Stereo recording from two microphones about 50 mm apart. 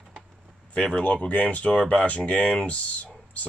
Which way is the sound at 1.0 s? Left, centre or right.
Left.